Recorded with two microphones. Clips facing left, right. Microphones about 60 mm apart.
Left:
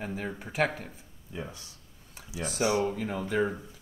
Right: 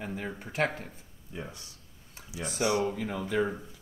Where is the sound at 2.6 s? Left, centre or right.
Left.